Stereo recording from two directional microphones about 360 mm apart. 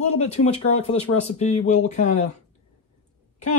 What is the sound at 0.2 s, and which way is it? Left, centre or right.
Speech, centre.